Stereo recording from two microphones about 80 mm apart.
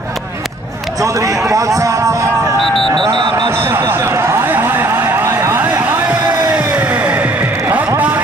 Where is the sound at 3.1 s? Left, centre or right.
Right.